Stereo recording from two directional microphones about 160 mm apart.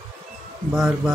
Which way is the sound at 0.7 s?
Centre (ahead or behind).